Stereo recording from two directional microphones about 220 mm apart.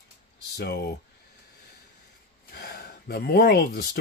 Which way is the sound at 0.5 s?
45° left (ahead or behind).